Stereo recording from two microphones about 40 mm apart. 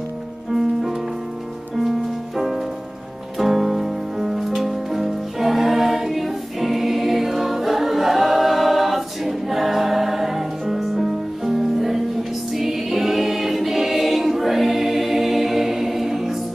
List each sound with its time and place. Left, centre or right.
0.5 s music: centre